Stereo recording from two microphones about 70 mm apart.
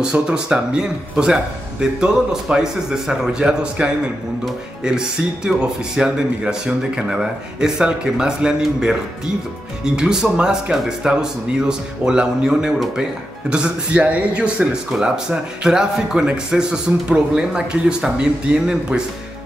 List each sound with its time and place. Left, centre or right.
0.0 s a man's voice: centre
12.7 s speech: centre
13.5 s a man's voice: centre